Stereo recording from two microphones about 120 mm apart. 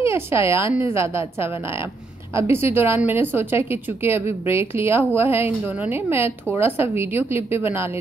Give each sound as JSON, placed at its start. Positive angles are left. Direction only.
{"t": 0.1, "sound": "a woman's voice", "side_deg": -20}